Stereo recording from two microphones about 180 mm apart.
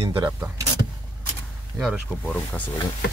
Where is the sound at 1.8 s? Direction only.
Centre (ahead or behind).